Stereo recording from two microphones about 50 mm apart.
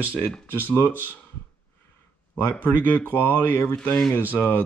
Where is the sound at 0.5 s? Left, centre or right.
Left.